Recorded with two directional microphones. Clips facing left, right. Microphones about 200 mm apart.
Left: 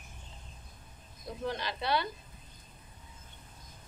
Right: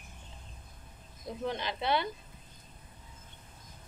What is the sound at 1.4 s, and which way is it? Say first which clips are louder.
Speech: right 1 dB; 20° right (ahead or behind).